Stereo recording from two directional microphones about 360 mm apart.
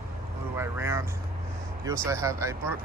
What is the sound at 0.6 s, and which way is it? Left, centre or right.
Speech, centre.